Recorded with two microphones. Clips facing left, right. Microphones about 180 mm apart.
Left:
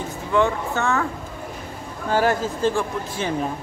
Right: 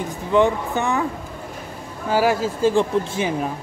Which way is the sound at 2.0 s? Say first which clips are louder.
Right 1 dB; 10° right (ahead or behind).